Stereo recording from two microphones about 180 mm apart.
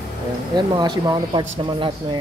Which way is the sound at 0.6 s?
25° right (ahead or behind).